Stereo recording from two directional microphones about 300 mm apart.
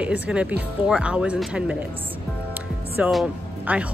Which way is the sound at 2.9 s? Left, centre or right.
Centre.